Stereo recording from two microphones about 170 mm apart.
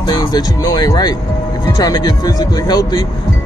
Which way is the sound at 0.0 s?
25° left (ahead or behind).